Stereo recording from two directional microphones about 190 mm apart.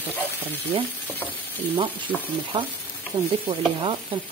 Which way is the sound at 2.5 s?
25° right (ahead or behind).